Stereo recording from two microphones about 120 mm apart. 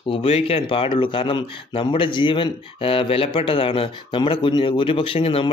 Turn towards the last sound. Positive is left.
turn(degrees=50)  # may be behind; listen again after turning